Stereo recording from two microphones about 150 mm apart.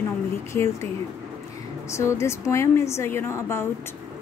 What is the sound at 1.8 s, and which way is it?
A woman's voice, 20° left (ahead or behind).